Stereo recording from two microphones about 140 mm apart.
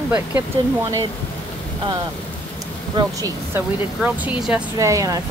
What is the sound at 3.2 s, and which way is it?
Speech, 15° right (ahead or behind).